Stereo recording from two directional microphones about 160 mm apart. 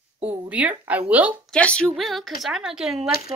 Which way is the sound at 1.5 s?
5° left (ahead or behind).